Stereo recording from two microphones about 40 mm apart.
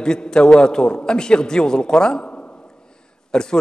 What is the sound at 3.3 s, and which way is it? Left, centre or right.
Speech, centre.